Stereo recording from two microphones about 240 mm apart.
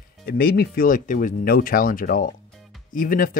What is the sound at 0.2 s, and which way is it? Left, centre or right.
Speech, left.